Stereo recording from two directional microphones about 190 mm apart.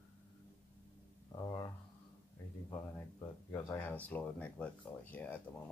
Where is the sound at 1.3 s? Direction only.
20° left (ahead or behind).